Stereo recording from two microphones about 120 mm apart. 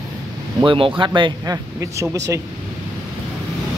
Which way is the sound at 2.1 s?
25° right (ahead or behind).